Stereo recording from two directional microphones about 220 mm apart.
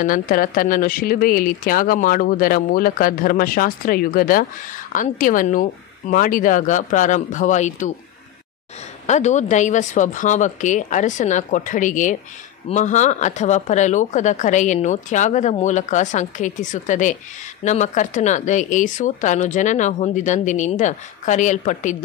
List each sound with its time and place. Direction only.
0.0 s speech: 40° left (ahead or behind)
9.0 s speech: 30° left (ahead or behind)